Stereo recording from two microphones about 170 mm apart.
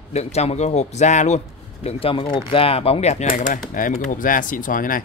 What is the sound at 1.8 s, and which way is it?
Speech, 30° left (ahead or behind).